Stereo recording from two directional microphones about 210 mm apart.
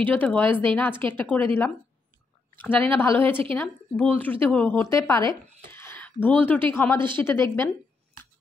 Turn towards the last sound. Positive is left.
turn(degrees=10)  # may be behind; listen again after turning